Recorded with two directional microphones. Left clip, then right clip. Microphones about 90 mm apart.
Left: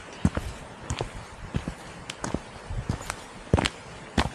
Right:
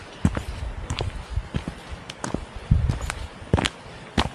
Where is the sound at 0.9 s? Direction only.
10° right (ahead or behind).